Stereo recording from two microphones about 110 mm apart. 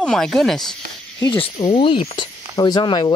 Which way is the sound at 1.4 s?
50° left (ahead or behind).